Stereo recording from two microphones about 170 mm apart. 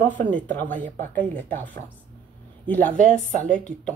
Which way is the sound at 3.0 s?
50° right (ahead or behind).